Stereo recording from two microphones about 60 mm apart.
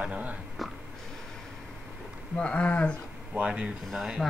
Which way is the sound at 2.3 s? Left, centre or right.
Centre.